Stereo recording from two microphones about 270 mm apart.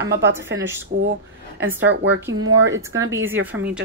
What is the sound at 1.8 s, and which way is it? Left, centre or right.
Speech, right.